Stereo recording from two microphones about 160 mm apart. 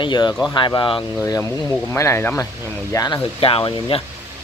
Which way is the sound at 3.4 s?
35° left (ahead or behind).